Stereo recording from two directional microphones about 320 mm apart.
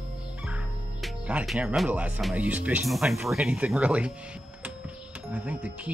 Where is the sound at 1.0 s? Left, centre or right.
Centre.